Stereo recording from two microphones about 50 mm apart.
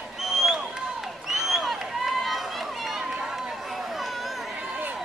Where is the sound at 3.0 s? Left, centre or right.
Centre.